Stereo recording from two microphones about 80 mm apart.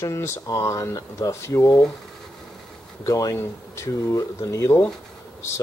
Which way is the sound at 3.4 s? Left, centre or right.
Left.